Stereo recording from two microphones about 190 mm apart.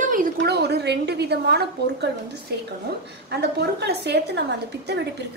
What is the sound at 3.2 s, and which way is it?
A woman's voice, 60° right (ahead or behind).